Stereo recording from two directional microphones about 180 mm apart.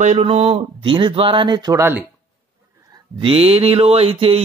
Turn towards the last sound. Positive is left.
turn(degrees=-30)  # may be behind; listen again after turning